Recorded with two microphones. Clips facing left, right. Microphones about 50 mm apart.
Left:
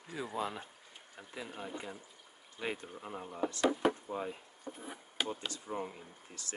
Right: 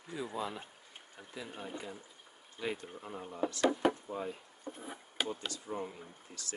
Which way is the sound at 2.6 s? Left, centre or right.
Left.